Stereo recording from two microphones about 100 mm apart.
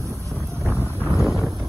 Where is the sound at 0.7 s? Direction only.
25° left (ahead or behind).